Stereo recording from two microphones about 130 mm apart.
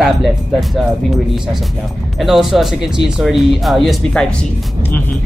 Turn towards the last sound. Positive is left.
turn(degrees=0)  # may be behind; listen again after turning